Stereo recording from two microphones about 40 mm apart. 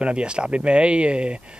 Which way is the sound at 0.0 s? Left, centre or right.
Right.